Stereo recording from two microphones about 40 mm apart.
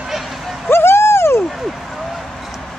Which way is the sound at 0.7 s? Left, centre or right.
Left.